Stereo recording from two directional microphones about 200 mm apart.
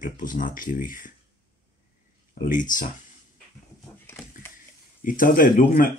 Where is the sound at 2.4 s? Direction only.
40° left (ahead or behind).